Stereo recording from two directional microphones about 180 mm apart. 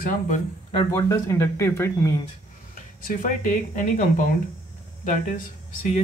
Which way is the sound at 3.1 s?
50° left (ahead or behind).